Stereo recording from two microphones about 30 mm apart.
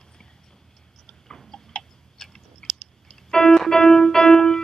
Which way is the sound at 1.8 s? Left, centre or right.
Centre.